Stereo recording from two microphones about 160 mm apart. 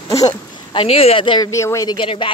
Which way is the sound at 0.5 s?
35° left (ahead or behind).